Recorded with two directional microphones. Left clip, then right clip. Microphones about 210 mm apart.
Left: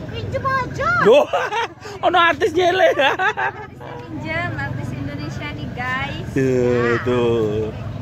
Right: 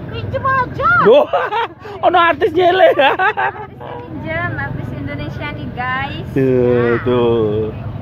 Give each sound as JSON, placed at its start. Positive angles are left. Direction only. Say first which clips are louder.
{"t": 0.6, "sound": "speech", "louder": "right 6 dB", "side_deg": -30}
{"t": 1.1, "sound": "speech", "louder": "right 3 dB", "side_deg": 0}
{"t": 4.3, "sound": "vehicle", "louder": "right 3 dB", "side_deg": -10}
{"t": 5.4, "sound": "vehicle", "louder": "right 4 dB", "side_deg": -35}
{"t": 6.3, "sound": "speech", "louder": "right 4 dB", "side_deg": -5}